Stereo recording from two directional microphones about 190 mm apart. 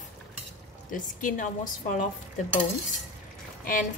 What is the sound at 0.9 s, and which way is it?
A woman's voice, 45° left (ahead or behind).